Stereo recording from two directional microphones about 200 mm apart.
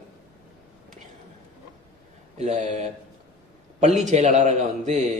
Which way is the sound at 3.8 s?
35° right (ahead or behind).